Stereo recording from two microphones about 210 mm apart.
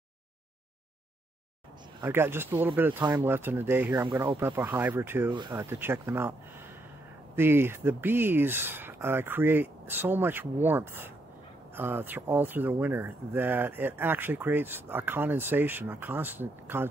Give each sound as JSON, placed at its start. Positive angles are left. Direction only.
{"t": 2.0, "sound": "speech", "side_deg": -10}
{"t": 7.3, "sound": "speech", "side_deg": -10}